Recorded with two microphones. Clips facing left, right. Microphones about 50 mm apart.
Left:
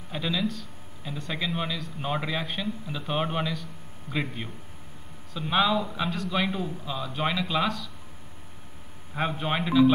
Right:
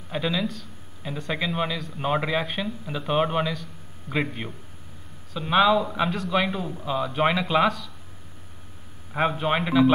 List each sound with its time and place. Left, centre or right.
0.1 s a man's voice: centre
6.8 s a man's voice: right
9.1 s a man's voice: right
9.7 s speech: right